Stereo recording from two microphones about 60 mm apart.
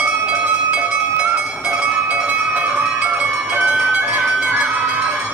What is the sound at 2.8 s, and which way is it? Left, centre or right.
Honk, right.